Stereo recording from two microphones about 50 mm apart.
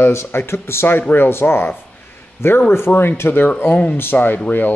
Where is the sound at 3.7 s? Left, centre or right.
Left.